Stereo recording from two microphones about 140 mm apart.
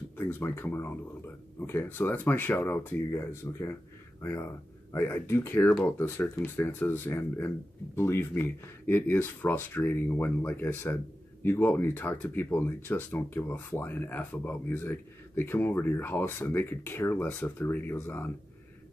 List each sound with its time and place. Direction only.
0.2 s speech: 15° left (ahead or behind)